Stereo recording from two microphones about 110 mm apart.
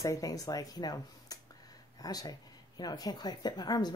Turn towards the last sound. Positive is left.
turn(degrees=40)  # may be behind; listen again after turning